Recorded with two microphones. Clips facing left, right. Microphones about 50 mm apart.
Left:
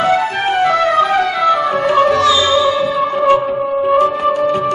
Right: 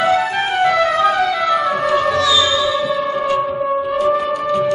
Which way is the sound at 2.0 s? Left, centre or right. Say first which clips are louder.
Left 3 dB; left.